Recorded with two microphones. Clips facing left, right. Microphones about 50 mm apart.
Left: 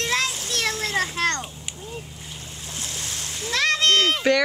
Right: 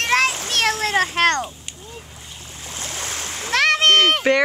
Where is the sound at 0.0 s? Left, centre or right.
Right.